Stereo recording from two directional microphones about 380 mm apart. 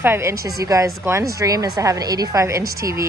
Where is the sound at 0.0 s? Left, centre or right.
Centre.